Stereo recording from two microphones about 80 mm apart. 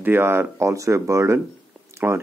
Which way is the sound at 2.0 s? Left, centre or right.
Right.